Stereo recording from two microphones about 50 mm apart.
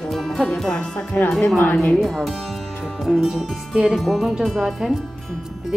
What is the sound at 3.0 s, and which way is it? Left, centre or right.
Speech, centre.